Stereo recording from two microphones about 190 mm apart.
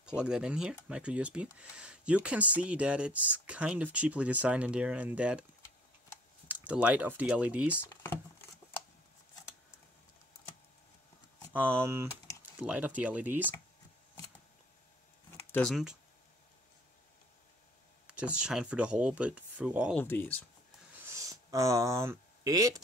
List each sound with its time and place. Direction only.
0.0 s speech: 5° right (ahead or behind)
6.4 s speech: 10° right (ahead or behind)
7.7 s speech: 10° left (ahead or behind)
11.5 s speech: 10° right (ahead or behind)
15.3 s a sound: 10° left (ahead or behind)
15.7 s speech: 5° right (ahead or behind)
18.0 s speech: 5° right (ahead or behind)
19.9 s speech: 10° left (ahead or behind)
21.1 s a sound: 15° right (ahead or behind)